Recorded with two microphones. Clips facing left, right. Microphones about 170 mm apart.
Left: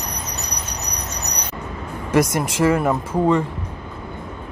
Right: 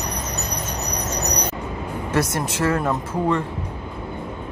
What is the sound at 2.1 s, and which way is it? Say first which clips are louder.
Speech: left 5 dB; 10° left (ahead or behind).